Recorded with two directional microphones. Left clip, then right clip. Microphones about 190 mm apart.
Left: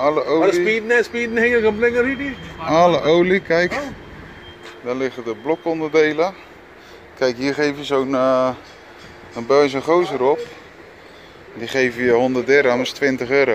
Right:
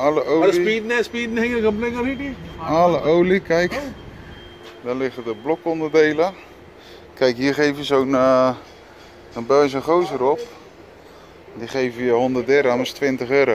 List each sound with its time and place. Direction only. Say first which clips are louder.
0.0 s speech: left 1 dB; 10° right (ahead or behind)
0.7 s a sound: left 3 dB; 55° right (ahead or behind)
2.6 s speech: left 2 dB; 5° left (ahead or behind); by 8.5 s 15° right (ahead or behind)
9.3 s speech: left 1 dB; centre (ahead or behind)
11.6 s speech: left 4 dB; 10° left (ahead or behind)